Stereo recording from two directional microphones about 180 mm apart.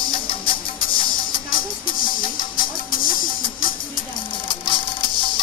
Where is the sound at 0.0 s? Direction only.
30° left (ahead or behind).